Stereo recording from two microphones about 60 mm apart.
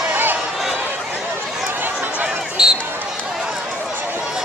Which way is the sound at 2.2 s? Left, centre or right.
Centre.